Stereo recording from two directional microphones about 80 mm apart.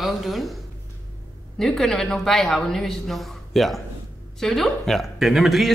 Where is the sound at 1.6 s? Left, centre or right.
Centre.